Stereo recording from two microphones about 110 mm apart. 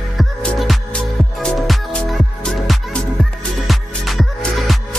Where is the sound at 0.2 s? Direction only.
5° left (ahead or behind).